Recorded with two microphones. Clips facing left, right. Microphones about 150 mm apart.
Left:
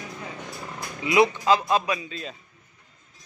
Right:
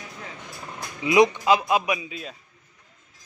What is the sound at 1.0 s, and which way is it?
Speech, 20° right (ahead or behind).